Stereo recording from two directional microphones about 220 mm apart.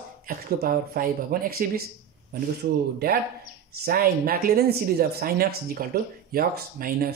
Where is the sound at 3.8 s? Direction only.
45° right (ahead or behind).